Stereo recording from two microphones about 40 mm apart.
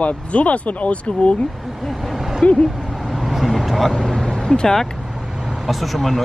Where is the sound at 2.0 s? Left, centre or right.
Centre.